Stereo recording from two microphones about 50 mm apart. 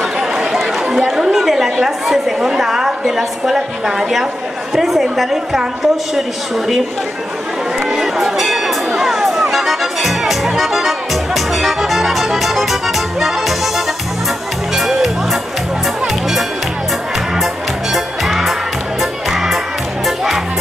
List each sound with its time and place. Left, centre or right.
0.0 s chatter: centre
0.8 s a woman's voice: centre
7.9 s music: centre
17.9 s music: centre